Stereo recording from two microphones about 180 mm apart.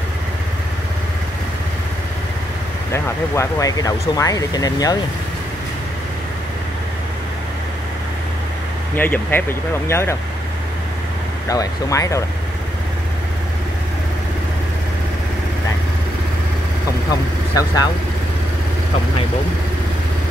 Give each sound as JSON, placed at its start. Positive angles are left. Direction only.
{"t": 2.9, "sound": "speech", "side_deg": 15}
{"t": 8.9, "sound": "speech", "side_deg": 10}
{"t": 11.4, "sound": "speech", "side_deg": 20}
{"t": 17.1, "sound": "speech", "side_deg": 20}